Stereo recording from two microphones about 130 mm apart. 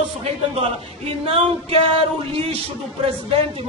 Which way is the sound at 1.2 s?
50° right (ahead or behind).